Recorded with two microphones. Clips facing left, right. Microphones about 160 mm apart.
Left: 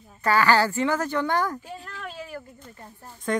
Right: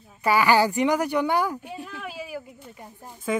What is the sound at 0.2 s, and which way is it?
Speech, 10° right (ahead or behind).